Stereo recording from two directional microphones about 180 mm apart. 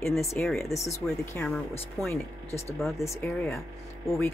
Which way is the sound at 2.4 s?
35° left (ahead or behind).